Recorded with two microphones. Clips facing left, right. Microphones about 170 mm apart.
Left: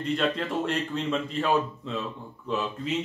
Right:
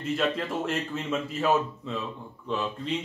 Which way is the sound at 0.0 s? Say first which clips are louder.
Left 1 dB; 5° right (ahead or behind).